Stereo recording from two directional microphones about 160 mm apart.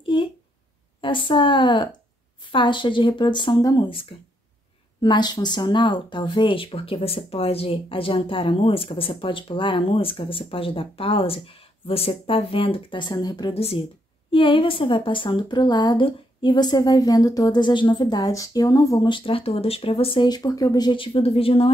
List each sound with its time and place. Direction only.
0.0 s a sound: 30° left (ahead or behind)
1.0 s a woman's voice: 30° left (ahead or behind)
13.6 s a woman's voice: 40° left (ahead or behind)